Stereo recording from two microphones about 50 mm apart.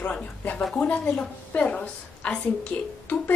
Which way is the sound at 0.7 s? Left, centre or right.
Left.